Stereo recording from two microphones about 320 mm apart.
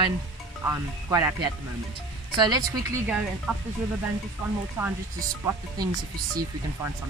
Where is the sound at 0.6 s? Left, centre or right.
Centre.